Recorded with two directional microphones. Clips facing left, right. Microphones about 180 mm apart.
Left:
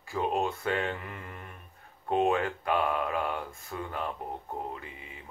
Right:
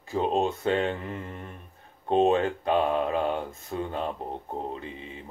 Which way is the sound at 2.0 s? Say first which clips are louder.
Right 5 dB; 25° right (ahead or behind).